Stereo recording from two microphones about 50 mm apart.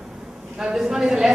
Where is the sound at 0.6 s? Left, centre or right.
Centre.